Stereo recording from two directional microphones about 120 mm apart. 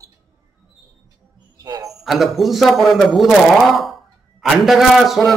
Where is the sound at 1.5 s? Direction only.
30° right (ahead or behind).